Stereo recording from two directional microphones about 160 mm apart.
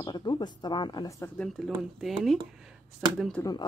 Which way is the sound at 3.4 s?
25° left (ahead or behind).